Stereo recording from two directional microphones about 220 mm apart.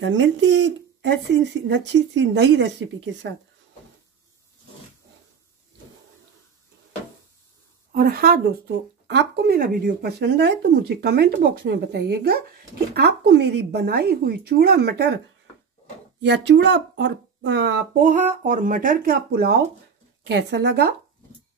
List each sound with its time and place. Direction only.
0.0 s speech: 60° right (ahead or behind)
7.9 s speech: 45° right (ahead or behind)
16.2 s speech: 50° right (ahead or behind)
18.0 s speech: 35° right (ahead or behind)